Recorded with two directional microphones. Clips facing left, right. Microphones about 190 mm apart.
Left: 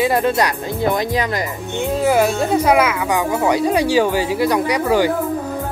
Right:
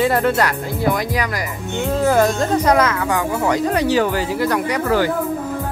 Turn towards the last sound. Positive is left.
turn(degrees=15)  # may be behind; listen again after turning